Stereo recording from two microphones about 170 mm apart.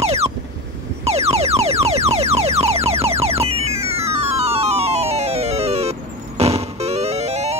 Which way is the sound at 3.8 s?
35° right (ahead or behind).